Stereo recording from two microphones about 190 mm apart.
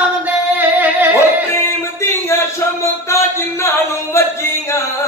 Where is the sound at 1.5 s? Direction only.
15° left (ahead or behind).